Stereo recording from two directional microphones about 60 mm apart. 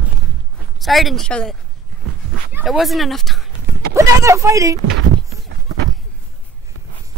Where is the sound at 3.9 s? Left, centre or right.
Right.